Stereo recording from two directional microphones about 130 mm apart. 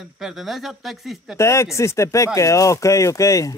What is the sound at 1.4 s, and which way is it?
Speech, 20° left (ahead or behind).